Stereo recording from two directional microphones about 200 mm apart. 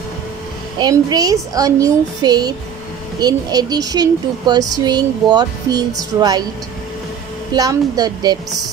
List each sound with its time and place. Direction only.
0.7 s speech: 20° right (ahead or behind)
7.5 s speech: 20° right (ahead or behind)